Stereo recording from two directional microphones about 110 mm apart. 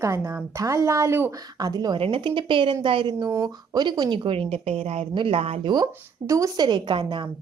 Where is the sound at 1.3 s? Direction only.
35° right (ahead or behind).